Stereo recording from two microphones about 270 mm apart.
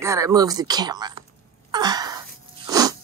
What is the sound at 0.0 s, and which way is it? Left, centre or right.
Speech, centre.